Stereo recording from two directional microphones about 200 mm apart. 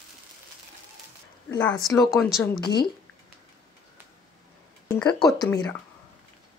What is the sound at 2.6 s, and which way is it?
Speech, 20° left (ahead or behind).